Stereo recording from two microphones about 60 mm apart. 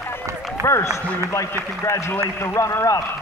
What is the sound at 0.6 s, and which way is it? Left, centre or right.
Speech, left.